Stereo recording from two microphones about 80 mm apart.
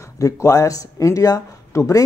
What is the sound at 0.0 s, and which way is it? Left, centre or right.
Speech, left.